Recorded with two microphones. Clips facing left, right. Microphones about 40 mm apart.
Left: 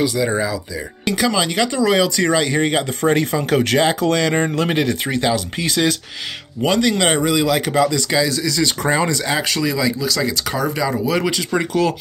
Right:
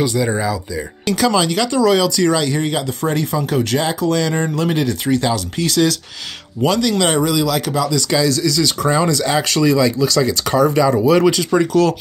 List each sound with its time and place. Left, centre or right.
0.0 s speech: centre; by 8.0 s left
8.1 s speech: centre
9.2 s speech: centre
11.5 s speech: left